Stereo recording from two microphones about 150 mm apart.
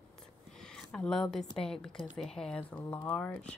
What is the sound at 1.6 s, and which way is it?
A woman's voice, 5° left (ahead or behind).